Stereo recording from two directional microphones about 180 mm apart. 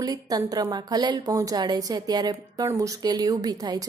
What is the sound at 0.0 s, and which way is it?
A woman's voice, 20° right (ahead or behind).